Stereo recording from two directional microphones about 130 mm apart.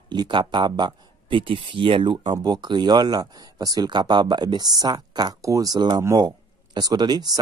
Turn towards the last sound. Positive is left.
turn(degrees=-30)  # may be behind; listen again after turning